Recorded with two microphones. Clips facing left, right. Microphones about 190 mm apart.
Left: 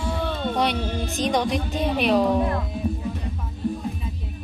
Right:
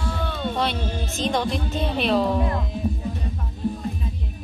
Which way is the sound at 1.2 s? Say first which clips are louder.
Left 1 dB; 15° left (ahead or behind).